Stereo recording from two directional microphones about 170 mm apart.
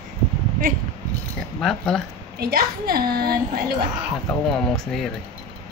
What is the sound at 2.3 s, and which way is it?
A woman's voice, 60° right (ahead or behind).